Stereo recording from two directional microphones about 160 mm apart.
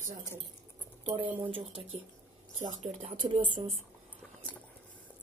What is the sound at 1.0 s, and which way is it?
Speech, 40° right (ahead or behind).